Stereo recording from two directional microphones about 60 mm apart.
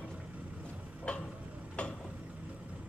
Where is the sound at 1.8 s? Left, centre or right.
Centre.